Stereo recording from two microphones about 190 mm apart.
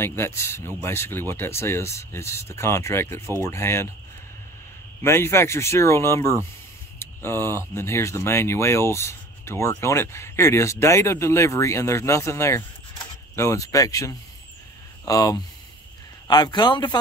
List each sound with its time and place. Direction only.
0.0 s speech: 10° left (ahead or behind)
5.0 s a man's voice: 15° left (ahead or behind)